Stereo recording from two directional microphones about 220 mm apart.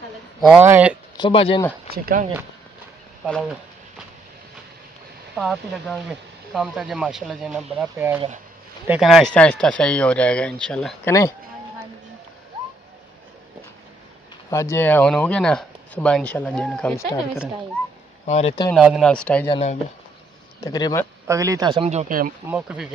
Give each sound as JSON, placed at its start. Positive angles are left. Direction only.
{"t": 0.4, "sound": "speech", "side_deg": -5}
{"t": 1.1, "sound": "speech", "side_deg": 20}
{"t": 1.9, "sound": "speech", "side_deg": -40}
{"t": 3.3, "sound": "speech", "side_deg": 5}
{"t": 5.3, "sound": "speech", "side_deg": 0}
{"t": 11.1, "sound": "speech", "side_deg": 15}
{"t": 14.5, "sound": "speech", "side_deg": 10}
{"t": 18.2, "sound": "speech", "side_deg": 30}
{"t": 18.8, "sound": "speech", "side_deg": 0}
{"t": 19.5, "sound": "speech", "side_deg": 30}
{"t": 20.6, "sound": "speech", "side_deg": 15}
{"t": 21.3, "sound": "speech", "side_deg": -15}
{"t": 22.5, "sound": "speech", "side_deg": -5}